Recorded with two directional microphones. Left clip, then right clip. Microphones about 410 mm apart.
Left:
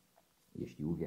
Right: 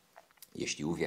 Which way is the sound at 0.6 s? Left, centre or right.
Centre.